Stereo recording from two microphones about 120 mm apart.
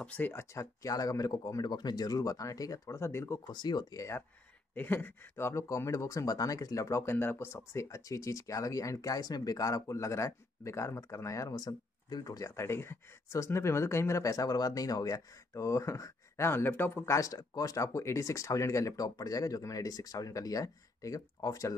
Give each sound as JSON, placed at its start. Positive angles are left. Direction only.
{"t": 0.0, "sound": "speech", "side_deg": 15}
{"t": 3.4, "sound": "speech", "side_deg": 35}
{"t": 4.7, "sound": "speech", "side_deg": 15}